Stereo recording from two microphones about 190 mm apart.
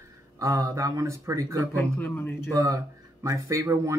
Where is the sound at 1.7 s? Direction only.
10° left (ahead or behind).